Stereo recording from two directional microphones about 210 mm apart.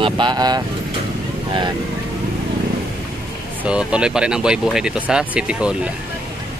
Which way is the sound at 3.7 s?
5° right (ahead or behind).